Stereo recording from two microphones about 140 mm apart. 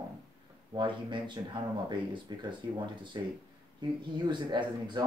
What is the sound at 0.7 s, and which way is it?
Speech, 35° right (ahead or behind).